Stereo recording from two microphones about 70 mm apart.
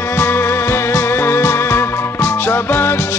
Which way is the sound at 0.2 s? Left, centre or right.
Left.